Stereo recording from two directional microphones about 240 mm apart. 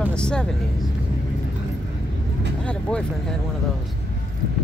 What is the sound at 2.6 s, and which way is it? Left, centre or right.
Speech, centre.